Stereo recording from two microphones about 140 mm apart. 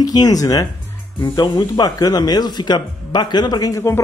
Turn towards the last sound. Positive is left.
turn(degrees=20)  # may be behind; listen again after turning